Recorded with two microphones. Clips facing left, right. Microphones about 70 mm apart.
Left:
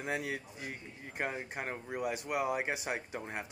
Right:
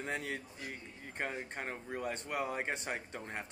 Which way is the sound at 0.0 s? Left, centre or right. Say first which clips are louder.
Left 2 dB; centre.